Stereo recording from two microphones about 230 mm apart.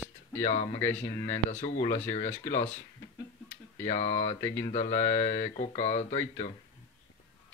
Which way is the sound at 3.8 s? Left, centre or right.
Left.